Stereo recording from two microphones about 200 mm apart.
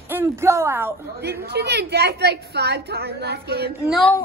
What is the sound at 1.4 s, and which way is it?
A woman's voice, 55° right (ahead or behind).